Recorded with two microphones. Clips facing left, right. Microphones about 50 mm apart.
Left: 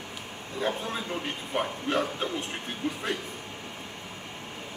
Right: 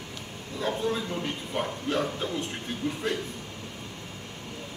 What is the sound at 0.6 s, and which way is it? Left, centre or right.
Speech, centre.